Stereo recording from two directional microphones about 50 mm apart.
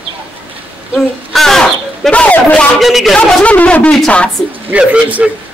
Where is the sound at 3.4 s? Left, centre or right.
Left.